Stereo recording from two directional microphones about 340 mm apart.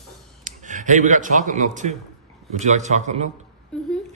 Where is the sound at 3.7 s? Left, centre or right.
Centre.